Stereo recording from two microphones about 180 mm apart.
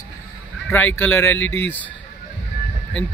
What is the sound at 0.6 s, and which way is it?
Speech, 10° left (ahead or behind).